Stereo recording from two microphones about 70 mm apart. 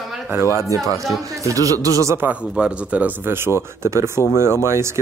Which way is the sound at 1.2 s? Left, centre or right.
Right.